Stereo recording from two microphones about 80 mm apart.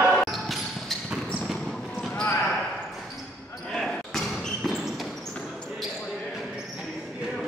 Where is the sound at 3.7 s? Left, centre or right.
Centre.